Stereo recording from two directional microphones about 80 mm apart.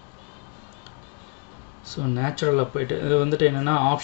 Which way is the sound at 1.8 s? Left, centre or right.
Centre.